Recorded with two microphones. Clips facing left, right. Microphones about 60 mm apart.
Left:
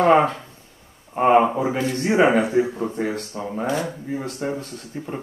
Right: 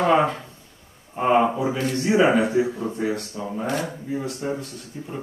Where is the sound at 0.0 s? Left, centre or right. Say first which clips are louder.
Left 3 dB; left.